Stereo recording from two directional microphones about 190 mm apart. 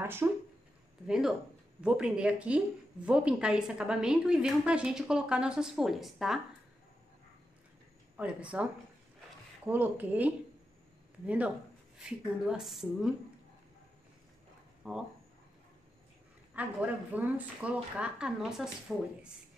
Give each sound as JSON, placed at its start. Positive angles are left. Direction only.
{"t": 0.0, "sound": "a woman's voice", "side_deg": -10}
{"t": 8.2, "sound": "speech", "side_deg": -5}
{"t": 9.7, "sound": "a woman's voice", "side_deg": -10}
{"t": 14.8, "sound": "a woman's voice", "side_deg": 0}
{"t": 16.5, "sound": "a woman's voice", "side_deg": -10}